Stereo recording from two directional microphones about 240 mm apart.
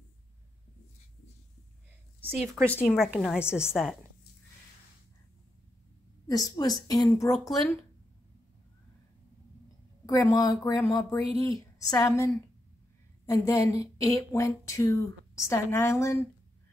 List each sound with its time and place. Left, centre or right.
2.2 s a woman's voice: centre
6.2 s speech: centre
7.4 s a woman's voice: centre
10.0 s speech: centre